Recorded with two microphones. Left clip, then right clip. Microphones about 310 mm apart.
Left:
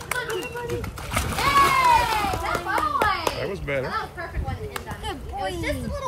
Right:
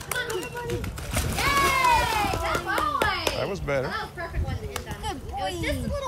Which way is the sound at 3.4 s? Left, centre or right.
Centre.